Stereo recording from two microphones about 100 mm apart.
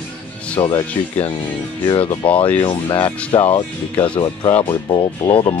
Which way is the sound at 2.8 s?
55° left (ahead or behind).